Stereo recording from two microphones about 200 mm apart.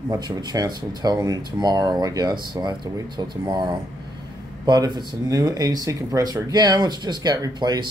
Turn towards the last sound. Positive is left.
turn(degrees=-20)  # may be behind; listen again after turning